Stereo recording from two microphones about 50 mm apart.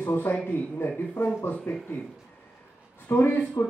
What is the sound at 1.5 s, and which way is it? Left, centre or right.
Speech, left.